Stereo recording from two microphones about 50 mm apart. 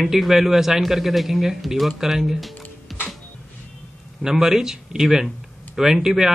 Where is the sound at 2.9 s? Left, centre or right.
Centre.